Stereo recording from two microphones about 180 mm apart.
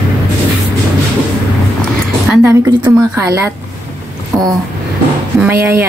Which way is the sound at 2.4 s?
15° right (ahead or behind).